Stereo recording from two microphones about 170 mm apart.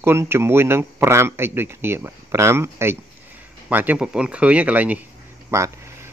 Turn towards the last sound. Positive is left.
turn(degrees=-15)  # may be behind; listen again after turning